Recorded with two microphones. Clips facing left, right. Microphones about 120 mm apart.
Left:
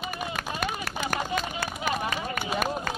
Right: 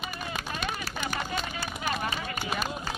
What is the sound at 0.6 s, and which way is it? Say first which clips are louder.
Run: left 4 dB; 50° left (ahead or behind).